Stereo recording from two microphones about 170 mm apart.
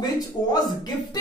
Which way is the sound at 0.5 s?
25° left (ahead or behind).